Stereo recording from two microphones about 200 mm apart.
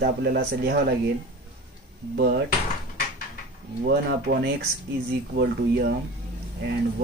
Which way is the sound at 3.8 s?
50° right (ahead or behind).